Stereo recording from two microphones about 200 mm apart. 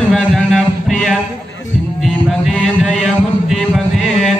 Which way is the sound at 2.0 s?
Centre (ahead or behind).